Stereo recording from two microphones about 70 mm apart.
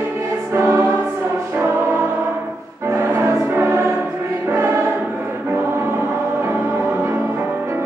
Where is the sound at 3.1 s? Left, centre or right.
Right.